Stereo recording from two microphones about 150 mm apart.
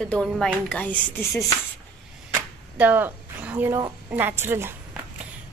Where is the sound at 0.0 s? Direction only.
5° left (ahead or behind).